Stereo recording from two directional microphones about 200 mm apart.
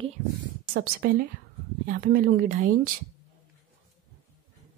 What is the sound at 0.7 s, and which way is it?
A woman's voice, 50° right (ahead or behind).